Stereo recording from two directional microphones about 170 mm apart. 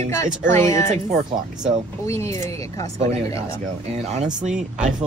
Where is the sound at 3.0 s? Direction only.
40° right (ahead or behind).